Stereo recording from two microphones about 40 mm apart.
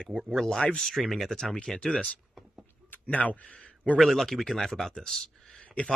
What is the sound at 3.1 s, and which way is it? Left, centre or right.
Speech, left.